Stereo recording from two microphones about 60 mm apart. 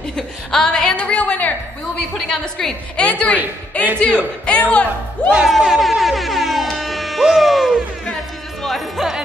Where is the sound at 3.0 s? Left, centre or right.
Left.